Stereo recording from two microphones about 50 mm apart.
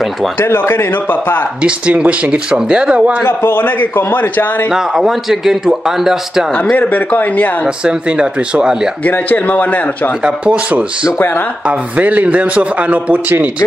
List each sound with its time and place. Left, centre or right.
0.4 s a man's voice: left
0.9 s a man's voice: left
1.6 s a man's voice: right
3.3 s a man's voice: left
4.6 s speech: centre
6.5 s a man's voice: left
7.6 s a man's voice: centre
9.0 s a man's voice: left
10.2 s a man's voice: right
11.1 s a man's voice: left
12.0 s a man's voice: right